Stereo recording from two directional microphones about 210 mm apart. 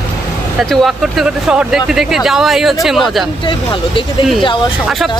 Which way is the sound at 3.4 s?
25° left (ahead or behind).